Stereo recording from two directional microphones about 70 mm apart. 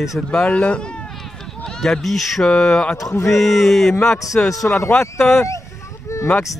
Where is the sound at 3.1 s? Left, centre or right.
Left.